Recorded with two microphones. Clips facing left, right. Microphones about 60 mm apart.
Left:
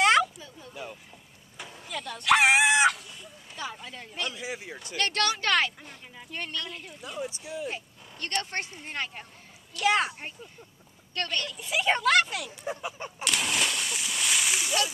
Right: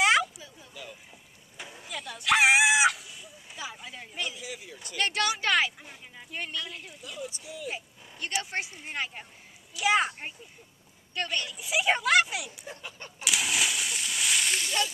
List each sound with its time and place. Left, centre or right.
0.0 s a sound: centre
1.6 s chicken: centre
4.4 s speech: left
4.9 s speech: centre
7.2 s speech: left
7.7 s a woman's voice: centre
12.6 s a sound: centre
13.2 s splash: centre